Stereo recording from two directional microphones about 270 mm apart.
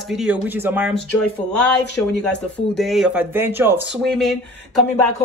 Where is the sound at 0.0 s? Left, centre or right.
Centre.